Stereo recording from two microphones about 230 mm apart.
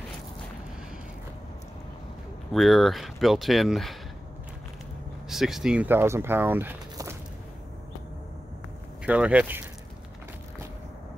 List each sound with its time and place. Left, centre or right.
2.5 s speech: centre
5.3 s speech: centre
9.0 s speech: centre